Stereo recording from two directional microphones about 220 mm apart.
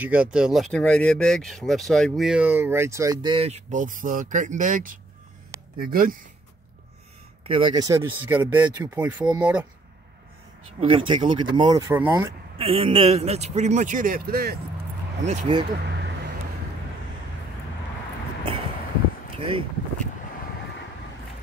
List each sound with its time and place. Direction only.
0.0 s a man's voice: 5° right (ahead or behind); by 6.1 s 40° right (ahead or behind)
7.4 s speech: 25° right (ahead or behind); by 9.7 s 5° right (ahead or behind)
10.8 s speech: 25° right (ahead or behind)
12.5 s a man's voice: 25° right (ahead or behind); by 14.6 s 45° right (ahead or behind)
15.2 s speech: 25° right (ahead or behind)
19.3 s a sound: 25° right (ahead or behind)